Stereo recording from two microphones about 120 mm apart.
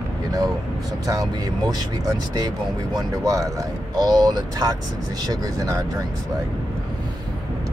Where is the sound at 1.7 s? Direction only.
30° right (ahead or behind).